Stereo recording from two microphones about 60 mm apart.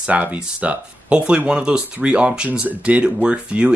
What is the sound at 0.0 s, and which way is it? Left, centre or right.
Speech, right.